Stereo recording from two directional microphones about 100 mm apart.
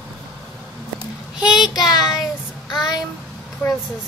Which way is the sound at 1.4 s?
5° right (ahead or behind).